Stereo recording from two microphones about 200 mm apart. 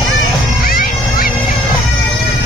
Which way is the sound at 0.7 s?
45° left (ahead or behind).